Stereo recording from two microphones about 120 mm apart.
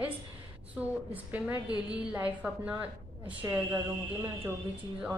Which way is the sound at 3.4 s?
25° right (ahead or behind).